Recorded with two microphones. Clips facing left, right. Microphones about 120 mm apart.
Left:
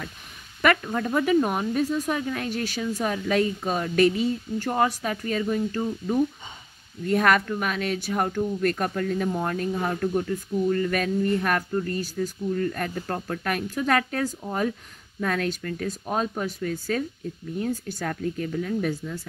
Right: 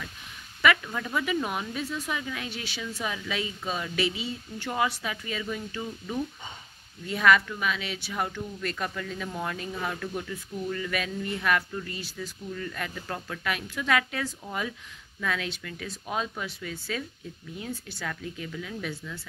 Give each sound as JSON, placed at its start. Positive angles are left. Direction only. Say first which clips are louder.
{"t": 0.8, "sound": "speech", "louder": "left 7 dB", "side_deg": 40}